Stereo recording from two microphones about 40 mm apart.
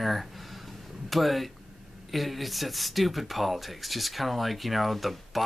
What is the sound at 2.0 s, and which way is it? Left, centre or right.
Speech, centre.